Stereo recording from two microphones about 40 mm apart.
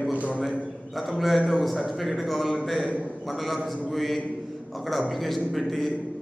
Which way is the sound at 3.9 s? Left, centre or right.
Centre.